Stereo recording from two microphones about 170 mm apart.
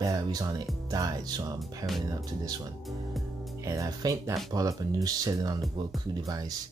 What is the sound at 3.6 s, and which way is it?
Speech, 20° right (ahead or behind).